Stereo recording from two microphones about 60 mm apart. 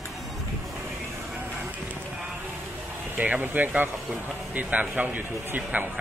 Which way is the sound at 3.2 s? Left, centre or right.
Right.